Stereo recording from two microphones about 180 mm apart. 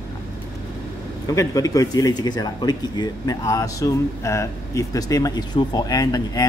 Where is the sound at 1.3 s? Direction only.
20° left (ahead or behind).